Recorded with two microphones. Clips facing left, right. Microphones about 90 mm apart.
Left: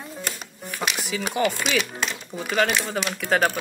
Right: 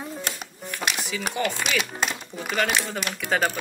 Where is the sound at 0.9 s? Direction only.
5° left (ahead or behind).